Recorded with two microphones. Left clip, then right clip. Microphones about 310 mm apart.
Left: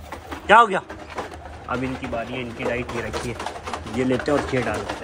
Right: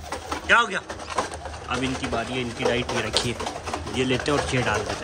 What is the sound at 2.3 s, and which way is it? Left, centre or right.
Speech, right.